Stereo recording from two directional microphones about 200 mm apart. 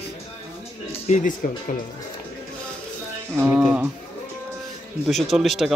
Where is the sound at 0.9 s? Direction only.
35° left (ahead or behind).